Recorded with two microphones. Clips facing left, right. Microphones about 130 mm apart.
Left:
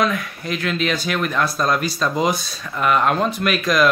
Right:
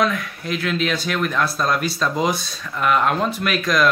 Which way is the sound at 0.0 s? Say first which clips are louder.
Even; centre (ahead or behind).